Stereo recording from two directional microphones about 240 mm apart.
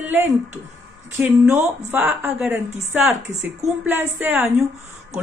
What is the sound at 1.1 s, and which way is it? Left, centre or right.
A woman's voice, centre.